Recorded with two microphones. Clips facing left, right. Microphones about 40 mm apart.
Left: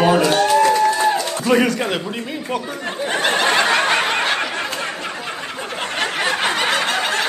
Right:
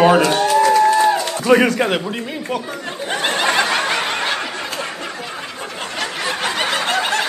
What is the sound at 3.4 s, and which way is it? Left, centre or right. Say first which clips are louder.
Snicker: even; left.